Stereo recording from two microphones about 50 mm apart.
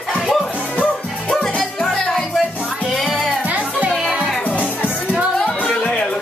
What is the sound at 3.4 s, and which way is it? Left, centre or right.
Music, right.